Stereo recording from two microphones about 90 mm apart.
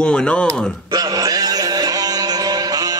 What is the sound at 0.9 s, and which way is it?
Music, 45° right (ahead or behind).